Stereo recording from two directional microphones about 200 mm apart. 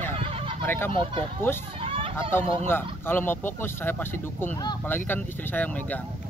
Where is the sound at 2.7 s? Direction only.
10° left (ahead or behind).